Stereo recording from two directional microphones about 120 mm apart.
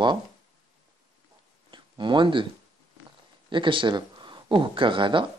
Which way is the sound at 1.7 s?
40° right (ahead or behind).